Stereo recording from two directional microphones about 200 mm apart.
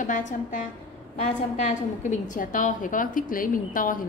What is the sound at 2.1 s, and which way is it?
A woman's voice, 40° left (ahead or behind).